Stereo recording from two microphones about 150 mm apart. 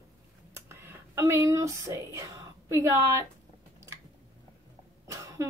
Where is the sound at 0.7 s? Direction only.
15° right (ahead or behind).